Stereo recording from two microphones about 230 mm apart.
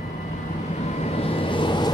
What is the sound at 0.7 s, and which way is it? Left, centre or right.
Vehicle, left.